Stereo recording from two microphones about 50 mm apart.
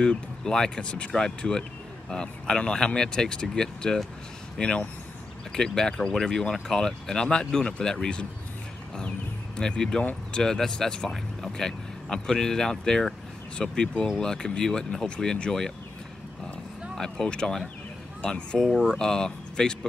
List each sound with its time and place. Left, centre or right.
0.0 s speech: centre
9.6 s speech: centre
16.9 s speech: centre